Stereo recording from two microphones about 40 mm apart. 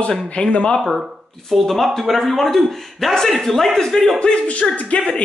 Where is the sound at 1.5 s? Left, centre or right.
Centre.